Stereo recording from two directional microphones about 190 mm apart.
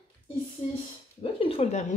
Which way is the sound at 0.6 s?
30° left (ahead or behind).